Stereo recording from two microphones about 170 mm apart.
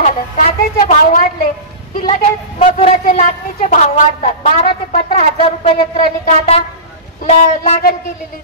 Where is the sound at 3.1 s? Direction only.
50° left (ahead or behind).